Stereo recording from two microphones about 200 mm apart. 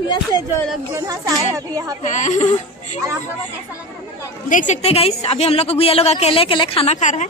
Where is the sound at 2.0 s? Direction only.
35° left (ahead or behind).